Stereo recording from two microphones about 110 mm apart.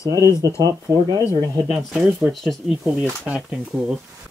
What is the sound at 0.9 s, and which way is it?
Speech, 10° right (ahead or behind).